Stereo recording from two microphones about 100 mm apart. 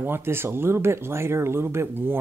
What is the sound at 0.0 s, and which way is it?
Speech, 25° right (ahead or behind).